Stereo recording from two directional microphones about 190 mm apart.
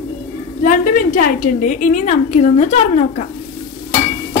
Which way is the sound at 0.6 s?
45° left (ahead or behind).